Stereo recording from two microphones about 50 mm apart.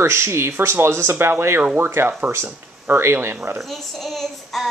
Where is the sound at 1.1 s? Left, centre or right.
Right.